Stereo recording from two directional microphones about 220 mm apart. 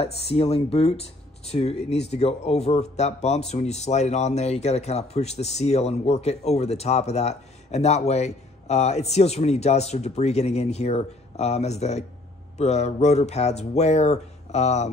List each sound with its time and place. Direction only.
0.0 s speech: 25° left (ahead or behind)